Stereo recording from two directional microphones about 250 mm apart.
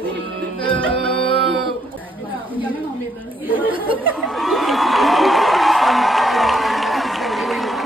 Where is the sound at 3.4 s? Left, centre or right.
Centre.